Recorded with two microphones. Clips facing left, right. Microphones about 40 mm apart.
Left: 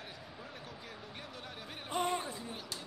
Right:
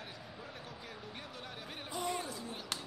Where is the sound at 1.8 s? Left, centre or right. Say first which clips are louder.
Left 4 dB; left.